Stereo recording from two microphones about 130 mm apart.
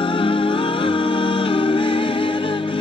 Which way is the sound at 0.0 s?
40° left (ahead or behind).